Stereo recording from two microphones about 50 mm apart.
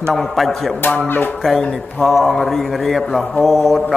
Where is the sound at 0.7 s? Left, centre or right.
Left.